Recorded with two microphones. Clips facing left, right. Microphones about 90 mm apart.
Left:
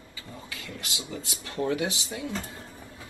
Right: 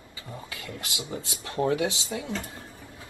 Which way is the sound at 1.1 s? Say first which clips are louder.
Right 2 dB; 30° right (ahead or behind).